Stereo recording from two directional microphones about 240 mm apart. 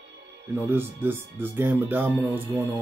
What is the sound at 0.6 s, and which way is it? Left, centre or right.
Speech, centre.